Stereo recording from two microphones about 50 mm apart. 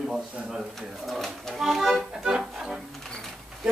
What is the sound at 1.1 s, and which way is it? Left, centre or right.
Speech, centre.